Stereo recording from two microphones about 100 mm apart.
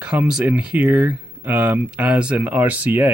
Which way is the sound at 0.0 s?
10° right (ahead or behind).